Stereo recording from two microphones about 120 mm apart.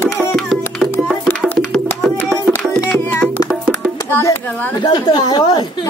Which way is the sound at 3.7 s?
Centre (ahead or behind).